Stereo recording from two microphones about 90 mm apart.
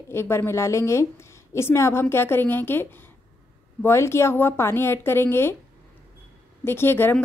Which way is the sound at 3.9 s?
30° left (ahead or behind).